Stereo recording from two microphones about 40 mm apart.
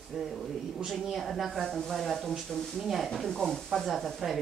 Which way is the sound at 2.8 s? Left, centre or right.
Centre.